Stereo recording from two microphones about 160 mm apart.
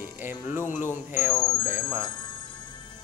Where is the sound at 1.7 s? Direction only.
15° right (ahead or behind).